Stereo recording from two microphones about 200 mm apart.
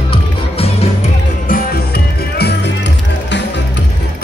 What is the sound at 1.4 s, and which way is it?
Music, 50° left (ahead or behind).